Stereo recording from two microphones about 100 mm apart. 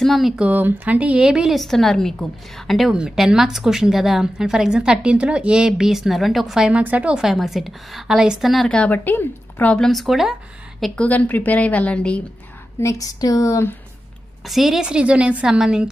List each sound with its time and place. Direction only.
0.0 s a woman's voice: centre (ahead or behind)
0.5 s a woman's voice: 15° right (ahead or behind); by 8.6 s centre (ahead or behind)
8.6 s a woman's voice: 10° left (ahead or behind)
9.8 s a woman's voice: centre (ahead or behind)
11.0 s a woman's voice: 15° left (ahead or behind)
12.8 s speech: 35° left (ahead or behind)
14.4 s a woman's voice: centre (ahead or behind)